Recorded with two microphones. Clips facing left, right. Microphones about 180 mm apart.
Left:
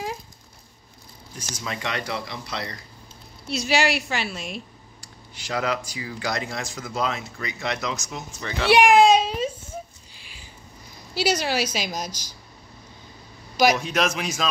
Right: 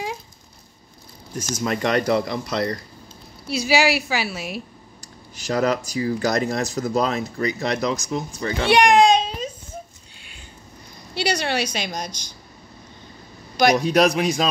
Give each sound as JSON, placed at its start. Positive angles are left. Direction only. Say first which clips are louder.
{"t": 1.3, "sound": "speech", "louder": "right 9 dB", "side_deg": -45}
{"t": 3.4, "sound": "a woman's voice", "louder": "right 3 dB", "side_deg": -5}
{"t": 5.0, "sound": "speech", "louder": "right 9 dB", "side_deg": -40}
{"t": 8.6, "sound": "a sound", "louder": "even", "side_deg": 5}
{"t": 11.1, "sound": "a woman's voice", "louder": "even", "side_deg": 5}
{"t": 13.7, "sound": "speech", "louder": "right 7 dB", "side_deg": -35}